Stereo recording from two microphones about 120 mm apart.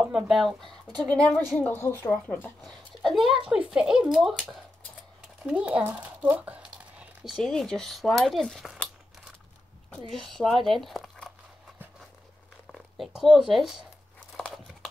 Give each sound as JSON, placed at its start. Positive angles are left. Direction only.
{"t": 0.1, "sound": "speech", "side_deg": 0}
{"t": 2.6, "sound": "speech", "side_deg": 0}
{"t": 10.0, "sound": "speech", "side_deg": 0}
{"t": 12.7, "sound": "speech", "side_deg": 0}
{"t": 14.3, "sound": "crumpling", "side_deg": 0}